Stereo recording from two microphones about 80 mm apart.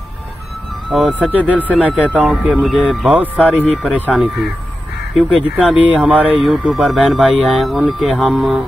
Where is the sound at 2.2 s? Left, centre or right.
Centre.